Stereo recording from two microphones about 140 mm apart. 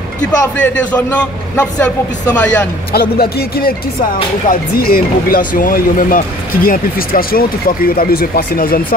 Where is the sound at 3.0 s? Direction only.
90° left.